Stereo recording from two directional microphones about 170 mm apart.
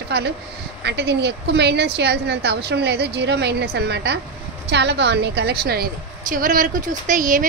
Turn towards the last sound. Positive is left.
turn(degrees=-50)  # may be behind; listen again after turning